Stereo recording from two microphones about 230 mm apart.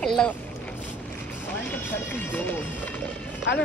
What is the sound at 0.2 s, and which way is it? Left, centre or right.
Speech, centre.